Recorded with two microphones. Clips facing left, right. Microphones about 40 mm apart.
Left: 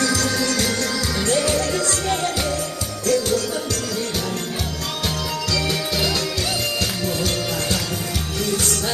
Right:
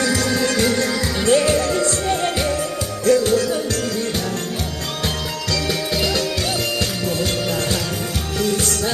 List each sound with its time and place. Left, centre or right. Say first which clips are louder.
0.0 s music: right 2 dB; right
3.1 s music: right 4 dB; right
5.7 s music: right 1 dB; centre